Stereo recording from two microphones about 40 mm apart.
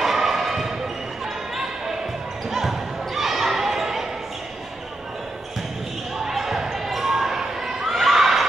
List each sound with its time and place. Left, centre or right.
0.0 s basketball bounce: centre
3.2 s basketball bounce: centre
6.3 s basketball bounce: centre